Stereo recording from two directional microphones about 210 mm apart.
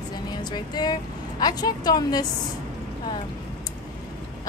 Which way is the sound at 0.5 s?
20° left (ahead or behind).